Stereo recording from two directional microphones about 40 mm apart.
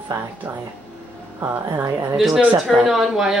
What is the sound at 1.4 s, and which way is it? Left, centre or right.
Speech, right.